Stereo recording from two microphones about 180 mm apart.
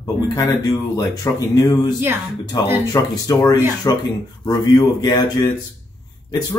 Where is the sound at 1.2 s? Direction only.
20° left (ahead or behind).